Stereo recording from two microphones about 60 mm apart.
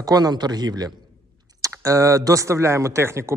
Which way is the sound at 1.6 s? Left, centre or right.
Right.